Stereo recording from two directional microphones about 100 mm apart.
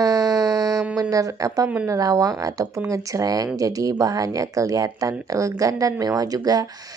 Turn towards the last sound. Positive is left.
turn(degrees=-40)  # may be behind; listen again after turning